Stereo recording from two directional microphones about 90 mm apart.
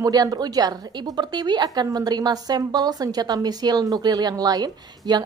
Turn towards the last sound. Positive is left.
turn(degrees=-50)  # may be behind; listen again after turning